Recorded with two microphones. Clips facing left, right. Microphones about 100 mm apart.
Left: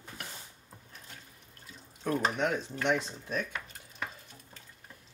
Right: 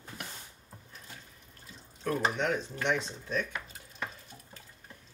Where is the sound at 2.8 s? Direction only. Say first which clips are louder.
Left 2 dB; 10° left (ahead or behind).